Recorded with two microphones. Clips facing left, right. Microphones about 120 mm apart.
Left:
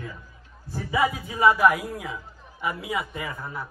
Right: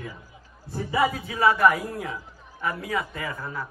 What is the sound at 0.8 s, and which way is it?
A man's voice, 15° left (ahead or behind).